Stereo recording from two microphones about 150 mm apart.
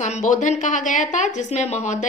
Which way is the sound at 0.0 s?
55° left (ahead or behind).